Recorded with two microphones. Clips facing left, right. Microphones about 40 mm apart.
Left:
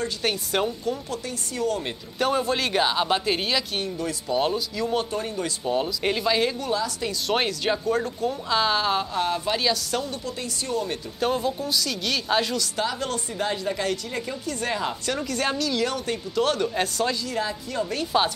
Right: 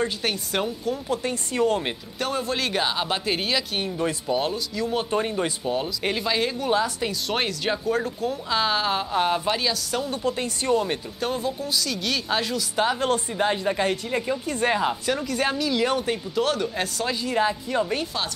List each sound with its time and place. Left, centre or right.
0.2 s speech: centre
1.2 s speech: right
2.1 s speech: centre
5.1 s speech: right
5.7 s speech: centre
9.1 s a woman's voice: centre
9.5 s speech: centre
10.2 s a woman's voice: right
11.1 s speech: centre
12.7 s a woman's voice: right
14.8 s speech: centre
17.2 s a woman's voice: right